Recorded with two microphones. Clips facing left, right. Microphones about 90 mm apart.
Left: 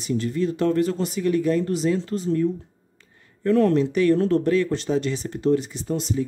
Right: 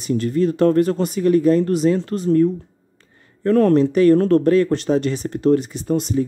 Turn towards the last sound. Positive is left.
turn(degrees=-55)  # may be behind; listen again after turning